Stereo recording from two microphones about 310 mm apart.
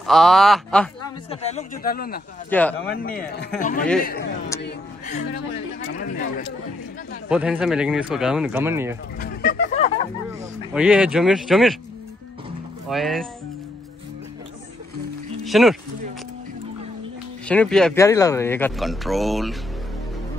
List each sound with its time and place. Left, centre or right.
0.0 s speech: centre
1.3 s speech: left
2.5 s speech: centre
3.3 s speech: left
4.6 s a sound: left
7.2 s speech: centre
9.2 s a sound: left
10.7 s speech: centre
12.8 s speech: centre
15.4 s speech: centre
17.5 s speech: centre